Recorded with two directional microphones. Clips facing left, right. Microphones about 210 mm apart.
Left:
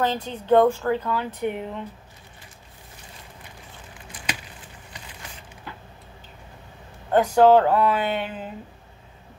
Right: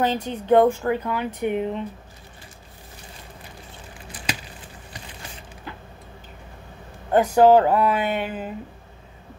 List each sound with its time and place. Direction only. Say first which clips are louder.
0.0 s speech: right 2 dB; 15° right (ahead or behind)
7.1 s speech: right 1 dB; 10° right (ahead or behind)